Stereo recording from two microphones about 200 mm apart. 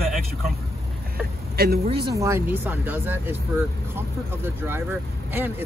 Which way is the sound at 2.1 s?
15° right (ahead or behind).